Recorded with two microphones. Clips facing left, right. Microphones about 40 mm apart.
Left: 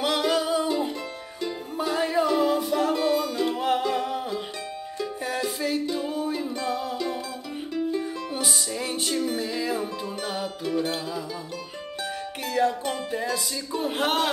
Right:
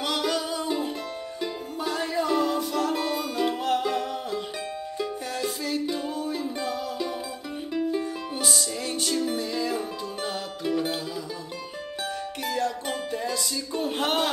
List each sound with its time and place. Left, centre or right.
0.0 s music: centre
1.8 s music: centre
3.8 s music: centre
7.7 s music: centre
8.4 s music: centre
10.6 s music: centre
12.4 s music: centre
13.1 s speech: centre